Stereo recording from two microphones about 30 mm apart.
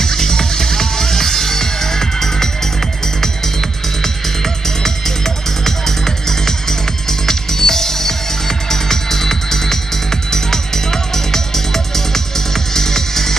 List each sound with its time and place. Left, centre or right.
0.0 s music: centre
7.1 s music: centre